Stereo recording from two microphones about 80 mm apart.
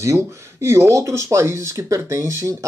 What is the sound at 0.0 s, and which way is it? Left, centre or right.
Speech, right.